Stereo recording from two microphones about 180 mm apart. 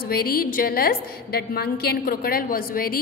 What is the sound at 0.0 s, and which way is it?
A woman's voice, 55° left (ahead or behind).